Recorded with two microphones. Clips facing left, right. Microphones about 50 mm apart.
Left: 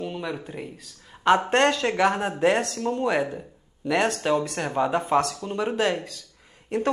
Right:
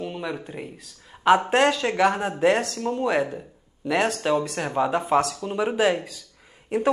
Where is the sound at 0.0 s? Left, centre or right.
Centre.